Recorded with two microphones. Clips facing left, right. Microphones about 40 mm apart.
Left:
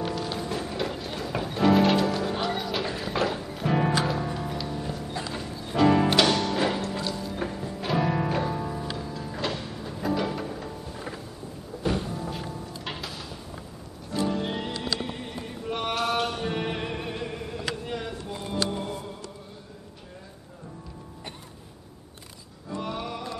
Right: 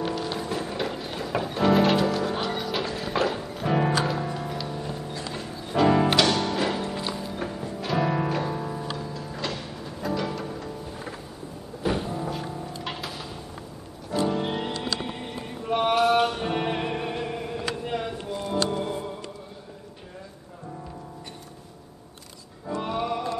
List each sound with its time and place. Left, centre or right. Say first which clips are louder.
0.0 s music: right 1 dB; centre
6.9 s music: even; centre
7.3 s music: even; centre
11.8 s music: right 2 dB; centre
12.3 s music: right 3 dB; centre
22.7 s music: right 5 dB; centre